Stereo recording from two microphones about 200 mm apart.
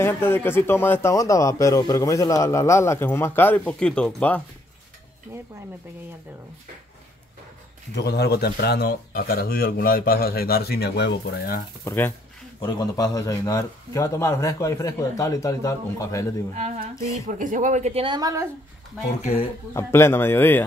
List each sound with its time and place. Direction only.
0.0 s speech: 10° left (ahead or behind)
7.9 s speech: 55° left (ahead or behind)
11.8 s speech: 10° left (ahead or behind)
16.5 s a woman's voice: 35° right (ahead or behind)
16.9 s speech: 15° left (ahead or behind)
17.3 s a woman's voice: 40° right (ahead or behind); by 18.5 s 15° right (ahead or behind)
19.2 s speech: 30° left (ahead or behind)
19.7 s speech: 15° left (ahead or behind)